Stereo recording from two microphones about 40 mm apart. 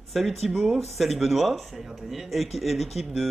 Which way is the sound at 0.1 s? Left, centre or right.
Centre.